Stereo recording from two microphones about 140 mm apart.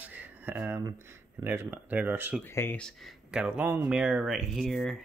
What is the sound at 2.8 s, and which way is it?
Speech, centre (ahead or behind).